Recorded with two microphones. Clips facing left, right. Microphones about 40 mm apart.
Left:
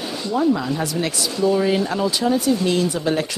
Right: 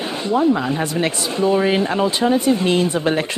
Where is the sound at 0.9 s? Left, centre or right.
Right.